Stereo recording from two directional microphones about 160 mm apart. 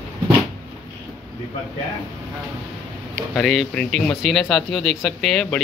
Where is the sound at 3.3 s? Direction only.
Centre (ahead or behind).